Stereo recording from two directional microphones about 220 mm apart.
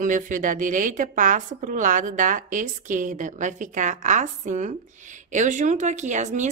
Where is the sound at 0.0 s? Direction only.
35° right (ahead or behind).